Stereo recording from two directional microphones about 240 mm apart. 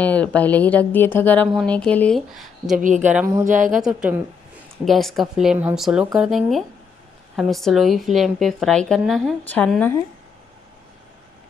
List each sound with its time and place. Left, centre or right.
0.0 s speech: centre
2.8 s a woman's voice: right
3.7 s speech: centre